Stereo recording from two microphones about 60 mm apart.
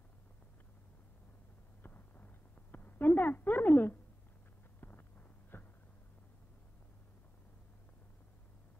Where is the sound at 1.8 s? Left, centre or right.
Left.